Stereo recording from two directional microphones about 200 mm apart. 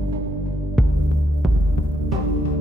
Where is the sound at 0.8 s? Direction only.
Centre (ahead or behind).